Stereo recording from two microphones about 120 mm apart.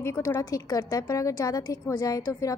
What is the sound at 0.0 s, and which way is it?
A woman's voice, 20° left (ahead or behind).